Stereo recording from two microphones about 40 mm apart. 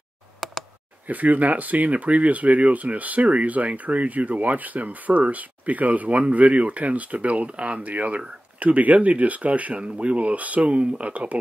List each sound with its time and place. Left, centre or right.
0.4 s clicking: centre
1.0 s speech: right